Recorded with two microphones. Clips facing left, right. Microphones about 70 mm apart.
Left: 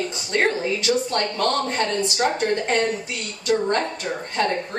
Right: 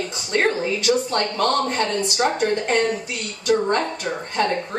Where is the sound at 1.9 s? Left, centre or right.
Right.